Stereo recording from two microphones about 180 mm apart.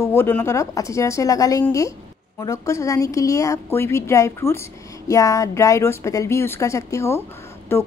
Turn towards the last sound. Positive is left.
turn(degrees=15)  # may be behind; listen again after turning